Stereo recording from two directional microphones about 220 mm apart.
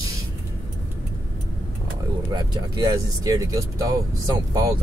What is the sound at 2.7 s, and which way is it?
Speech, 15° right (ahead or behind).